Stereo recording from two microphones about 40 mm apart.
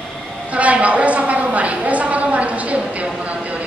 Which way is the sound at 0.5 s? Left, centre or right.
Right.